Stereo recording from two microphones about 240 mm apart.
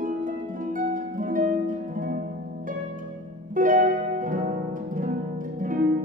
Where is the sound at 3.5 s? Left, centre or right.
Right.